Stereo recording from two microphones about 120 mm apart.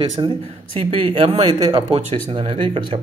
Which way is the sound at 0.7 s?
55° right (ahead or behind).